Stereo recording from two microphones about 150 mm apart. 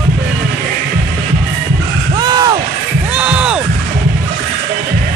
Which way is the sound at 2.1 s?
25° right (ahead or behind).